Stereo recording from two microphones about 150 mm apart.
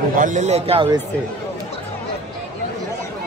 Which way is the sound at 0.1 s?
60° right (ahead or behind).